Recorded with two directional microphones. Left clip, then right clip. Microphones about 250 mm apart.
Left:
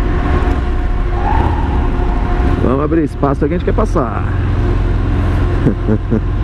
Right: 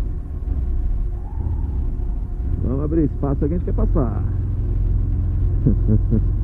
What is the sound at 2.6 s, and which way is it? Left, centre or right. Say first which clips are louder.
Speech: left 7 dB; centre.